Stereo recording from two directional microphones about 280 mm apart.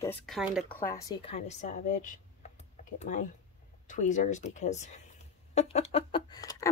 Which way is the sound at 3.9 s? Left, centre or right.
Left.